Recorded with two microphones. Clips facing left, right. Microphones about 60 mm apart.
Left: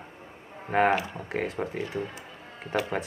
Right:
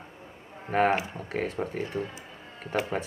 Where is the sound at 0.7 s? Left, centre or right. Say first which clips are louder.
Left 1 dB; centre.